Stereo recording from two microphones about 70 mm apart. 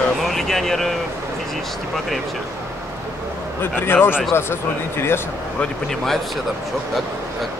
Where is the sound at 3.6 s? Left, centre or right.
Left.